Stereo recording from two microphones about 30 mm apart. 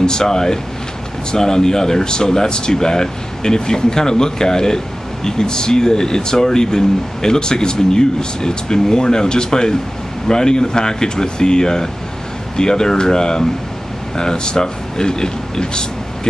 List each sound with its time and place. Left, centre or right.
0.0 s speech: left